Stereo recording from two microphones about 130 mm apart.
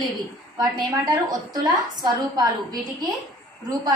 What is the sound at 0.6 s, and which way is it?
A woman's voice, 35° right (ahead or behind).